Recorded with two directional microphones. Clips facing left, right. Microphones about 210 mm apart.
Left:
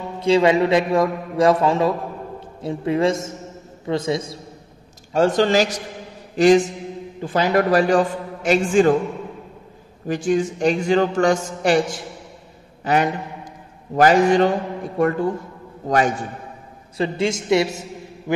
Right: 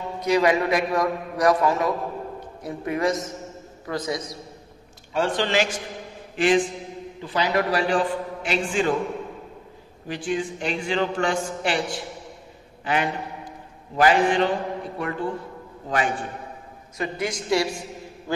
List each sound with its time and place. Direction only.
0.2 s a man's voice: 25° left (ahead or behind)
5.1 s a man's voice: 40° left (ahead or behind)
10.0 s a man's voice: 45° left (ahead or behind)
16.9 s a man's voice: 30° left (ahead or behind)